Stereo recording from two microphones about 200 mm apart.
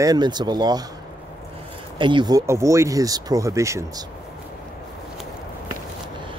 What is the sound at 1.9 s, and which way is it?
Speech, 25° right (ahead or behind).